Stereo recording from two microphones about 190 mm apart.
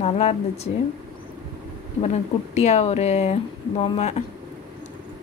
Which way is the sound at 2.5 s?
35° left (ahead or behind).